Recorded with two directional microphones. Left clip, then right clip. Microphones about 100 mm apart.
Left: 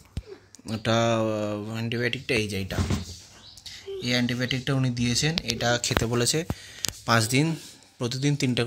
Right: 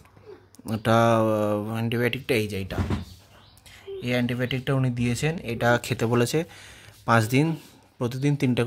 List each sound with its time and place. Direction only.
0.7 s speech: 40° right (ahead or behind)
2.2 s speech: 25° right (ahead or behind)
2.5 s speech: 10° right (ahead or behind)
3.6 s speech: 30° right (ahead or behind)